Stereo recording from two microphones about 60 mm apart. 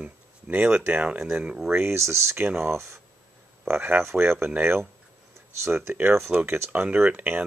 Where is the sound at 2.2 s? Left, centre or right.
Right.